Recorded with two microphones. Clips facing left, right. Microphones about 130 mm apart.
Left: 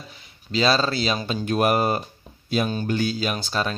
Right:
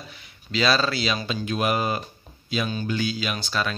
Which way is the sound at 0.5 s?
35° left (ahead or behind).